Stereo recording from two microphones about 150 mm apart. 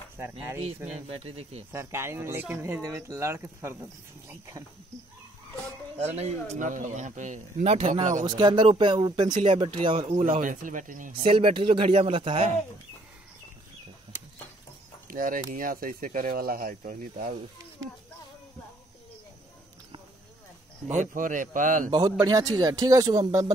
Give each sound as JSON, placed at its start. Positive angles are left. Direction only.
{"t": 1.0, "sound": "speech", "side_deg": -40}
{"t": 1.7, "sound": "speech", "side_deg": -15}
{"t": 5.9, "sound": "speech", "side_deg": -45}
{"t": 6.5, "sound": "speech", "side_deg": -55}
{"t": 7.7, "sound": "speech", "side_deg": -40}
{"t": 8.0, "sound": "speech", "side_deg": -55}
{"t": 8.3, "sound": "speech", "side_deg": -30}
{"t": 10.4, "sound": "speech", "side_deg": -60}
{"t": 11.2, "sound": "speech", "side_deg": -35}
{"t": 15.0, "sound": "speech", "side_deg": -70}
{"t": 20.9, "sound": "speech", "side_deg": -60}
{"t": 22.2, "sound": "speech", "side_deg": -25}